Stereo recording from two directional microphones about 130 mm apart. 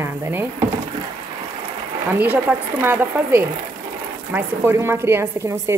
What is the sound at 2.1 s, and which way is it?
A woman's voice, 10° right (ahead or behind).